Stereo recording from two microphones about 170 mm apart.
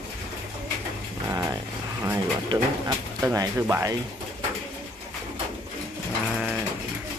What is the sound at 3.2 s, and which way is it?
Speech, 20° right (ahead or behind).